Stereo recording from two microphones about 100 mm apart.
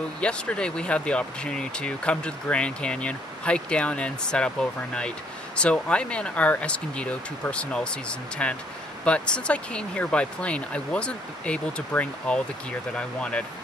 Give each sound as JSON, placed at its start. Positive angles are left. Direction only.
{"t": 0.2, "sound": "speech", "side_deg": 10}